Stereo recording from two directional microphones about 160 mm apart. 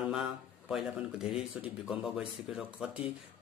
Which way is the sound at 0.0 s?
5° right (ahead or behind).